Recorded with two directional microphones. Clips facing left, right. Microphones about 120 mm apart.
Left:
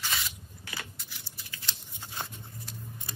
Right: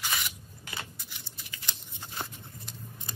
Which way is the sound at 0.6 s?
20° right (ahead or behind).